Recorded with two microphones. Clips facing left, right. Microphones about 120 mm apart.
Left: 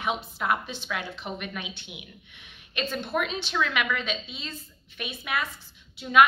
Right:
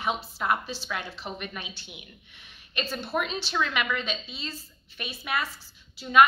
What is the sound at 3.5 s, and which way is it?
A woman's voice, centre (ahead or behind).